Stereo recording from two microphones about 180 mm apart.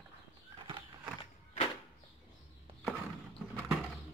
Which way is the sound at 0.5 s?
30° right (ahead or behind).